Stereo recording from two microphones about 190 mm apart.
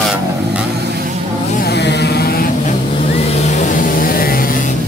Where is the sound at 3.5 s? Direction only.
40° left (ahead or behind).